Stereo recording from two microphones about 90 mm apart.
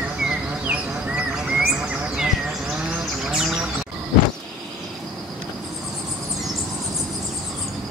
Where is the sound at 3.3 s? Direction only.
5° right (ahead or behind).